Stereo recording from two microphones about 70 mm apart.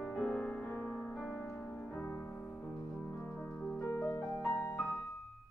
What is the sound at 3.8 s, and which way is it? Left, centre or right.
Music, left.